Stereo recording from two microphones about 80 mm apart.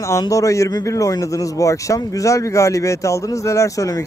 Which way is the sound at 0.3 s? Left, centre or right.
Left.